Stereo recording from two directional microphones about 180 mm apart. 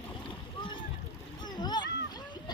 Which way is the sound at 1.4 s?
25° left (ahead or behind).